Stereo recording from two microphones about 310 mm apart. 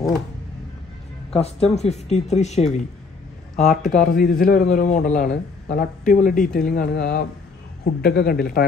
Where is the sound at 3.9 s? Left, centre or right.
Left.